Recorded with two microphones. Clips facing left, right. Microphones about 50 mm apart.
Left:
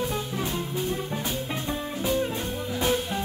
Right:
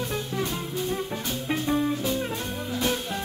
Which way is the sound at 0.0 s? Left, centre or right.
Centre.